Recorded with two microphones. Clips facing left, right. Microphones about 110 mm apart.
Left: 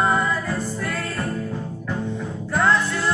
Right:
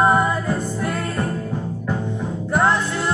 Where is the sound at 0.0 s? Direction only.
20° right (ahead or behind).